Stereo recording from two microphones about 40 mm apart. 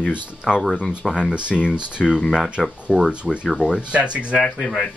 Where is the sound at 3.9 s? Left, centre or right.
Right.